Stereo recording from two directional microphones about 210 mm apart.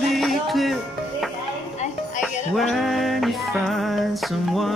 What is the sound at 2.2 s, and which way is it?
Music, centre (ahead or behind).